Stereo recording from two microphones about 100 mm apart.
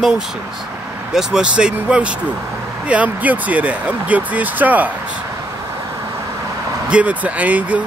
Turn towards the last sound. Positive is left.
turn(degrees=-15)  # may be behind; listen again after turning